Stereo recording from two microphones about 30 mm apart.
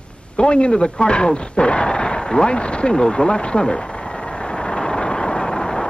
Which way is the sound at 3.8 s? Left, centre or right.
Left.